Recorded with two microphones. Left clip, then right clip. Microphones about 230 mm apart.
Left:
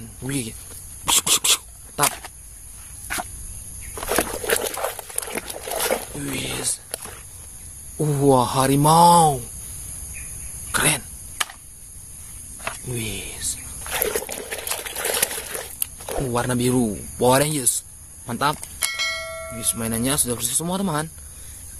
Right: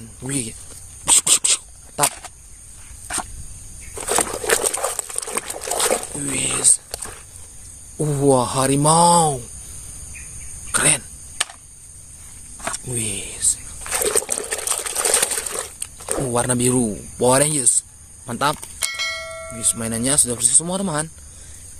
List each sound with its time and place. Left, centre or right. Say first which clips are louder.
0.2 s speech: right 1 dB; centre
1.0 s dog: right 1 dB; centre
4.3 s dog: right 3 dB; centre
4.7 s patter: right 2 dB; right
5.6 s a sound: right 3 dB; centre
8.0 s speech: even; centre
10.7 s dog: right 1 dB; centre
12.8 s a sound: right 2 dB; centre
13.8 s liquid: right 3 dB; centre
16.3 s speech: right 2 dB; centre